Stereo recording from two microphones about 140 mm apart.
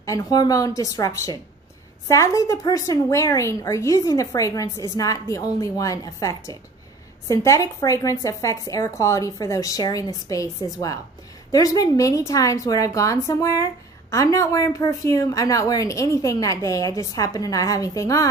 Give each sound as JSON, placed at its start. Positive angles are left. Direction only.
{"t": 0.0, "sound": "a woman's voice", "side_deg": 25}